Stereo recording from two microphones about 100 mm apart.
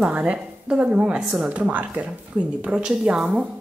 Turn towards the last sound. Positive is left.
turn(degrees=-10)  # may be behind; listen again after turning